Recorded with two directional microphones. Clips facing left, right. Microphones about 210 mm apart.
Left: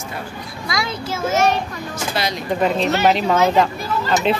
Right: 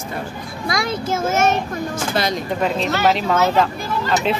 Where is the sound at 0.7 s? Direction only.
50° right (ahead or behind).